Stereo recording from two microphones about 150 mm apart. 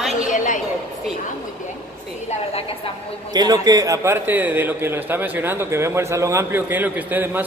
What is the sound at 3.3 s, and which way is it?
A man's voice, 25° right (ahead or behind).